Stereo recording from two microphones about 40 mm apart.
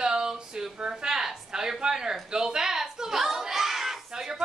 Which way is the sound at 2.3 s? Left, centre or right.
Centre.